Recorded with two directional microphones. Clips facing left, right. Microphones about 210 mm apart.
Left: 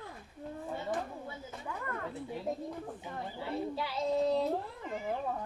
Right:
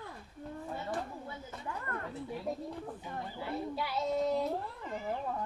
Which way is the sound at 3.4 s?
30° left (ahead or behind).